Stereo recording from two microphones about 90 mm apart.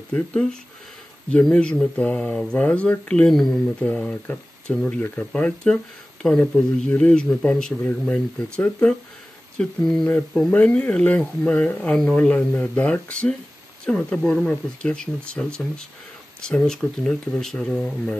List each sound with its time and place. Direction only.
0.1 s speech: 10° left (ahead or behind)
3.3 s speech: 5° left (ahead or behind)
3.8 s speech: 15° left (ahead or behind)
9.6 s speech: 5° left (ahead or behind)
10.0 s speech: 15° left (ahead or behind)